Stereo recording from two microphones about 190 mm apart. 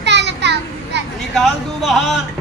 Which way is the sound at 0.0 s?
65° right (ahead or behind).